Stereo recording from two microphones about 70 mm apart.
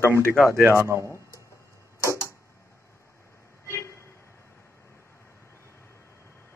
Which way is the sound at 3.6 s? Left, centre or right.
Left.